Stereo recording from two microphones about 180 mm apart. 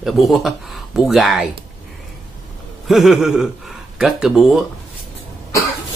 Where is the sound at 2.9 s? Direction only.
Centre (ahead or behind).